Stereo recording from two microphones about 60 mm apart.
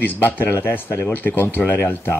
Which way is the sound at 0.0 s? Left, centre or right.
Left.